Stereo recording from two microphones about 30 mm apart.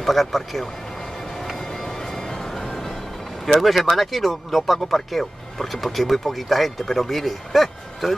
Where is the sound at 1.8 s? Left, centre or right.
Centre.